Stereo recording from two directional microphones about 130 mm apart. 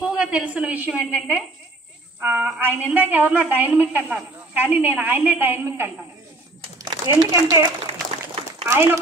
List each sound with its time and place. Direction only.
0.1 s a sound: 5° right (ahead or behind)
0.5 s a woman's voice: 10° right (ahead or behind)
6.8 s speech: 30° right (ahead or behind)
8.6 s speech: 20° right (ahead or behind)